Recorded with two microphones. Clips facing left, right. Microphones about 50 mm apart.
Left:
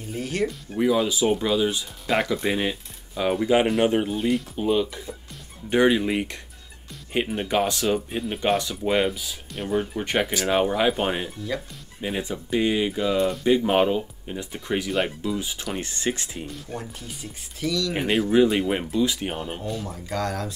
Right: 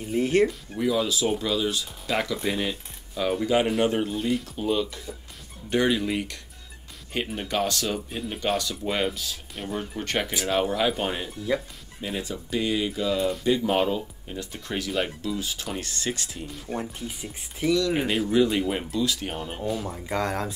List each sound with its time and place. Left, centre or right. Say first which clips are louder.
0.1 s speech: right 5 dB; right
0.7 s speech: left 3 dB; left
16.6 s speech: right 3 dB; right
18.3 s speech: left 3 dB; left
19.7 s speech: right 2 dB; centre
20.1 s speech: right 1 dB; right